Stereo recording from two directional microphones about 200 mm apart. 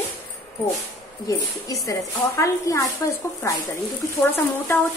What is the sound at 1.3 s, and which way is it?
Speech, 15° left (ahead or behind).